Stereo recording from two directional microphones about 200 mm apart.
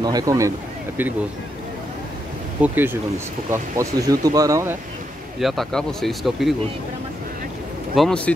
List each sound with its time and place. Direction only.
0.0 s speech: 20° right (ahead or behind)
2.6 s speech: 10° right (ahead or behind)
5.4 s speech: centre (ahead or behind)
7.9 s speech: centre (ahead or behind)